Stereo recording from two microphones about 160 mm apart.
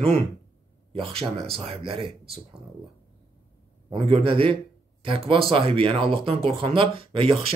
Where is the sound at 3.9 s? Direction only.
35° right (ahead or behind).